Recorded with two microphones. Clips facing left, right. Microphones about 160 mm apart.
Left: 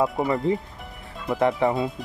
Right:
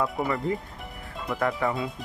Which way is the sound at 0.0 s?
25° left (ahead or behind).